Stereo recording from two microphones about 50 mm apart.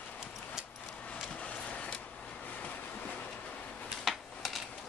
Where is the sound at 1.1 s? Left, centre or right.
Left.